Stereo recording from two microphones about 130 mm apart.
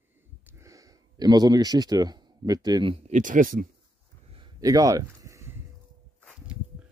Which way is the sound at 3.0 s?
80° right.